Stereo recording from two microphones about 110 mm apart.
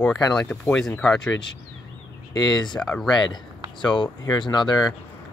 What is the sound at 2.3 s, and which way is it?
Speech, 40° left (ahead or behind).